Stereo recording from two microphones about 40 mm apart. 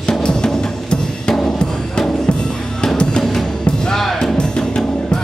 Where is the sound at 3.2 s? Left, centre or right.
Centre.